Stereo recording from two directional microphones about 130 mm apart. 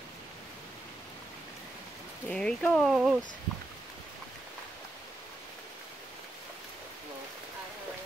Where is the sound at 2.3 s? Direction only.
5° left (ahead or behind).